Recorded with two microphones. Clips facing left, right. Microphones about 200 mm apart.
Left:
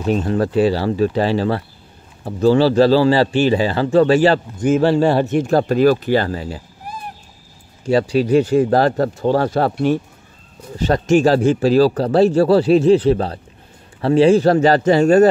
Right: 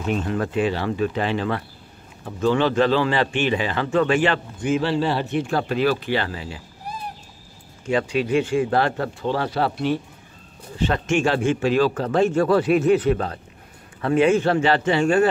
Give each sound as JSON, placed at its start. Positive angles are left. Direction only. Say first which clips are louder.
{"t": 0.0, "sound": "a man's voice", "louder": "left 6 dB", "side_deg": 35}
{"t": 7.8, "sound": "a man's voice", "louder": "left 6 dB", "side_deg": 35}